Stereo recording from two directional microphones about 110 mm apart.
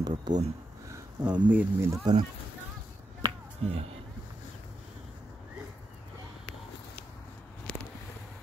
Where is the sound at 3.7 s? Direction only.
60° right (ahead or behind).